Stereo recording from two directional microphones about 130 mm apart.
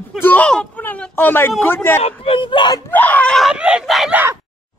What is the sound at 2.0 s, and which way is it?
Speech, 45° left (ahead or behind).